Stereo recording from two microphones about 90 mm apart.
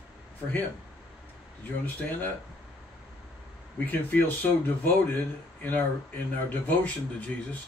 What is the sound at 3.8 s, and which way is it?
Speech, 20° left (ahead or behind).